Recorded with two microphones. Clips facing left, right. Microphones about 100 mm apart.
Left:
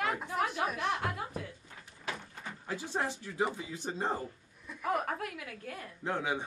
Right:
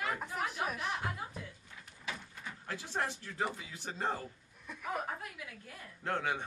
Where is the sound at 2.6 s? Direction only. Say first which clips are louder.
Left 3 dB; 15° left (ahead or behind).